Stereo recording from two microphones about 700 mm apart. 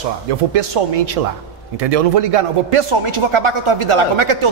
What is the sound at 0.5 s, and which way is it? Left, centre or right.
A man's voice, right.